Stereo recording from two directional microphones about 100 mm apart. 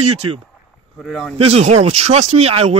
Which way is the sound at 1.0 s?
5° left (ahead or behind).